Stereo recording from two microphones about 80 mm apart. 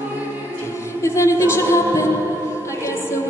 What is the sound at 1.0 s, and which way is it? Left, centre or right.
Speech, left.